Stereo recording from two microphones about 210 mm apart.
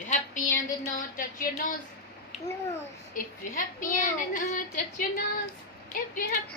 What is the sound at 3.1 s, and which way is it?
Female singing, 40° left (ahead or behind).